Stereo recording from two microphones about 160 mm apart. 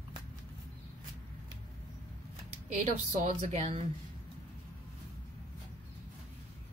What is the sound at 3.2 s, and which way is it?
Speech, 40° right (ahead or behind).